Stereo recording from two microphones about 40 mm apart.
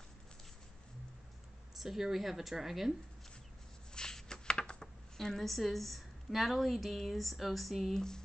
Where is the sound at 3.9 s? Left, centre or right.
Centre.